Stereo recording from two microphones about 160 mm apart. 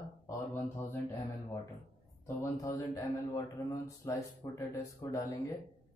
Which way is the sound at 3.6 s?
20° left (ahead or behind).